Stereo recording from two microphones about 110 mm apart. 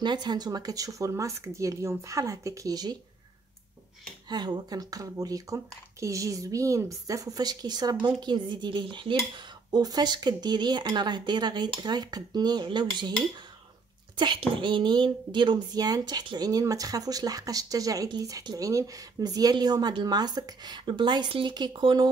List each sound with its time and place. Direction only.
0.0 s speech: 40° right (ahead or behind)
4.3 s speech: 40° right (ahead or behind)
8.2 s dishes: 45° right (ahead or behind)
9.7 s speech: 35° right (ahead or behind)
14.1 s speech: 45° right (ahead or behind)